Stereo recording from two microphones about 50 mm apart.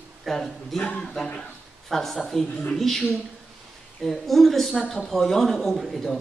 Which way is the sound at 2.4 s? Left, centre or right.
Left.